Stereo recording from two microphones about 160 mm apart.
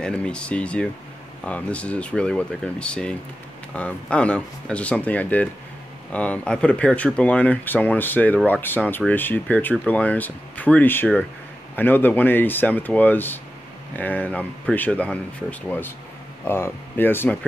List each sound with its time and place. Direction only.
0.0 s speech: 5° left (ahead or behind)
16.4 s speech: 15° left (ahead or behind)